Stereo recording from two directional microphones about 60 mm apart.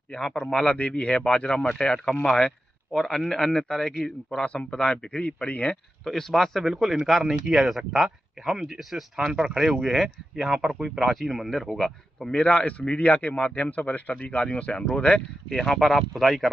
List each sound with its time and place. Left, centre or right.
0.1 s speech: centre
6.0 s a man's voice: centre
12.3 s a man's voice: centre